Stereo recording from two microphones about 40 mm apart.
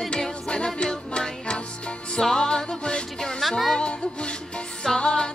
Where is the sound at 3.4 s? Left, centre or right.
Centre.